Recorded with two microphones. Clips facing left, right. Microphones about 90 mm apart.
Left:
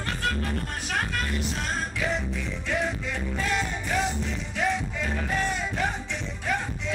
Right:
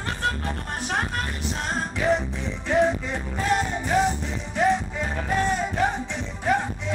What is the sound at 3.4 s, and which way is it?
Music, 40° right (ahead or behind).